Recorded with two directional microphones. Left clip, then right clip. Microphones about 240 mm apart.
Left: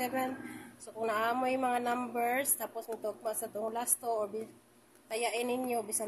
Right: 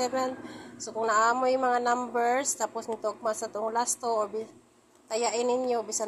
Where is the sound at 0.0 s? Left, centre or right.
Centre.